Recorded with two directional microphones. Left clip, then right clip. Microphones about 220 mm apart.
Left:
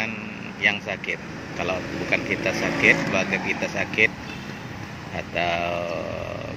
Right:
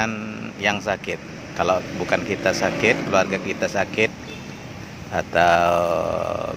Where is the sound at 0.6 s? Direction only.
20° right (ahead or behind).